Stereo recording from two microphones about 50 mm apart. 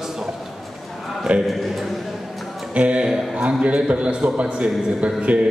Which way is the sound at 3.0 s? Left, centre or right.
Centre.